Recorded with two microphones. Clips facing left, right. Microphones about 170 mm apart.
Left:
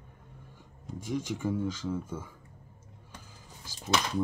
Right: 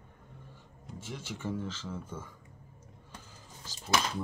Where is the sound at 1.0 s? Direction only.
15° left (ahead or behind).